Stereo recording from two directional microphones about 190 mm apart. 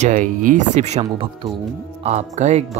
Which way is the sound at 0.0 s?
40° right (ahead or behind).